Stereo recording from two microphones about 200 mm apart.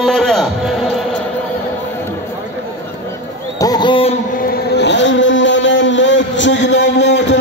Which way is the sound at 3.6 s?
20° left (ahead or behind).